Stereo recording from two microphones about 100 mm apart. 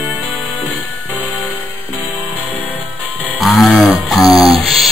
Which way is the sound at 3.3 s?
Centre (ahead or behind).